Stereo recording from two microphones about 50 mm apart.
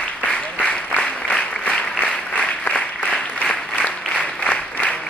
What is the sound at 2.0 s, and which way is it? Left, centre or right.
Applause, left.